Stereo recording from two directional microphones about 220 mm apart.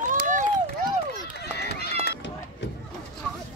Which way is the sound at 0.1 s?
35° right (ahead or behind).